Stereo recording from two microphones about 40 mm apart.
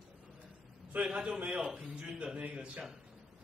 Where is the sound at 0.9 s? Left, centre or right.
Right.